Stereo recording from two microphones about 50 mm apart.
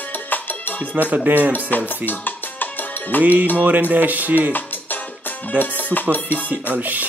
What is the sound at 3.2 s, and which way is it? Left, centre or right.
Music, right.